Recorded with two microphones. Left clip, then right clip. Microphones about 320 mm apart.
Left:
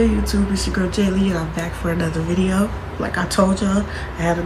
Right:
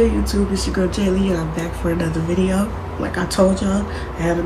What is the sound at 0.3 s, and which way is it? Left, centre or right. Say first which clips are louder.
Speech: right 1 dB; centre.